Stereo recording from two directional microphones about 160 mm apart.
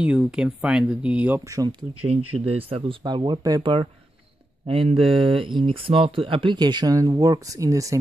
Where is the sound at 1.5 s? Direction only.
25° right (ahead or behind).